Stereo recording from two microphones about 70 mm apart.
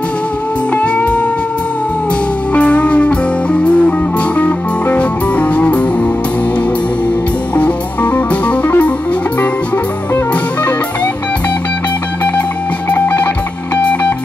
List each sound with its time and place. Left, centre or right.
0.7 s music: left
2.5 s music: centre
7.5 s music: centre
12.9 s music: left